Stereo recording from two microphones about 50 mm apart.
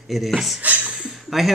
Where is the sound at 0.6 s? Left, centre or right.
Right.